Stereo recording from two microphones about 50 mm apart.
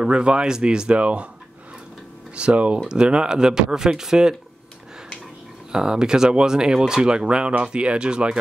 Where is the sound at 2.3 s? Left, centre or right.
Right.